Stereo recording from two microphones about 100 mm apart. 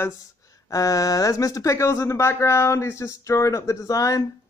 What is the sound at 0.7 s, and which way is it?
Speech, 35° left (ahead or behind).